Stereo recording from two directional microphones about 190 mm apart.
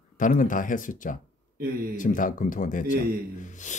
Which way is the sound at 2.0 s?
45° left (ahead or behind).